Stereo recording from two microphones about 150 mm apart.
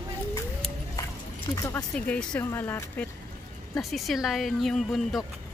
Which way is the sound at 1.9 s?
5° left (ahead or behind).